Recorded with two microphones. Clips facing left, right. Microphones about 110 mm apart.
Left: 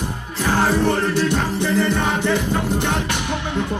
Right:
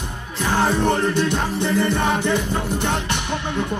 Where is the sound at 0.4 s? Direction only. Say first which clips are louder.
Left 1 dB; 20° right (ahead or behind).